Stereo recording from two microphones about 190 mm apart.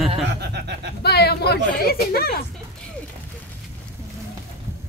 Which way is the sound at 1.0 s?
60° left (ahead or behind).